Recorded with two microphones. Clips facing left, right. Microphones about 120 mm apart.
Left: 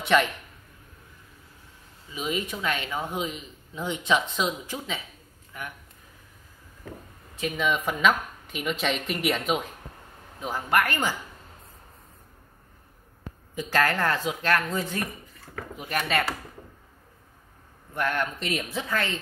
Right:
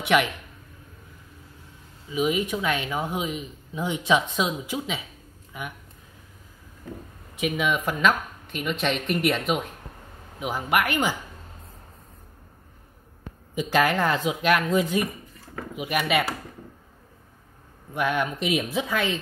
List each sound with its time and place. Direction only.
0.0 s a man's voice: 10° right (ahead or behind)
2.1 s a man's voice: 15° right (ahead or behind)
7.3 s speech: 10° right (ahead or behind)
10.4 s a man's voice: 15° right (ahead or behind)
13.6 s a man's voice: 15° right (ahead or behind)
17.9 s a man's voice: 10° right (ahead or behind)